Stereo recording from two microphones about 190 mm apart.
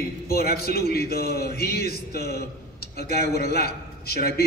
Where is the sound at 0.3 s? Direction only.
55° left (ahead or behind).